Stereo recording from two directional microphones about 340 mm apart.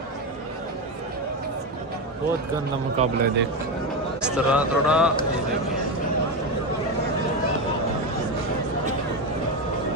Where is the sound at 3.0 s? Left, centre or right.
Right.